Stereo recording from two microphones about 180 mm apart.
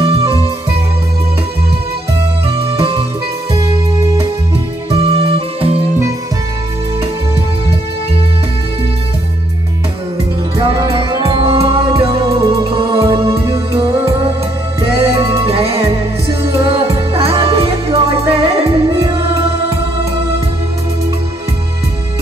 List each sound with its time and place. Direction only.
2.4 s music: 30° right (ahead or behind)
4.9 s music: 35° right (ahead or behind)
10.6 s music: 30° right (ahead or behind)